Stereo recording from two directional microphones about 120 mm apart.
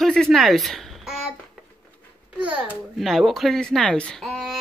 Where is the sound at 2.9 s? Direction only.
Centre (ahead or behind).